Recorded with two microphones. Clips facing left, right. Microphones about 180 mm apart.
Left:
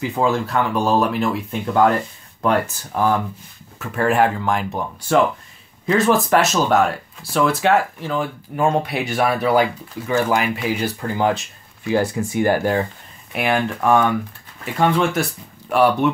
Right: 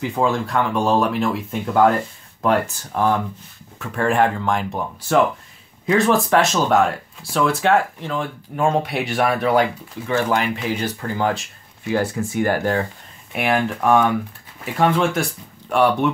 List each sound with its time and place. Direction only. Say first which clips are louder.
0.0 s speech: left 1 dB; centre (ahead or behind); by 12.8 s 15° left (ahead or behind)
13.3 s speech: even; centre (ahead or behind)